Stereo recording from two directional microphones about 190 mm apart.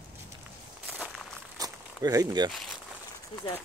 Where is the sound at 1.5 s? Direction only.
20° right (ahead or behind).